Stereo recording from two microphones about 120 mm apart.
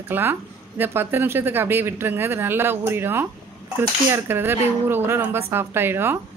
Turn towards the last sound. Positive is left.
turn(degrees=-20)  # may be behind; listen again after turning